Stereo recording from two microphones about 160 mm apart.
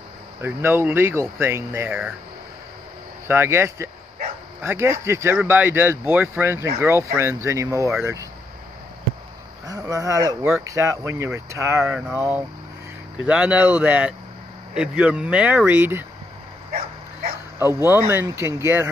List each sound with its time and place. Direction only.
0.4 s speech: 15° right (ahead or behind)
3.3 s speech: 15° right (ahead or behind)
9.7 s speech: 20° right (ahead or behind)
17.7 s speech: 15° right (ahead or behind)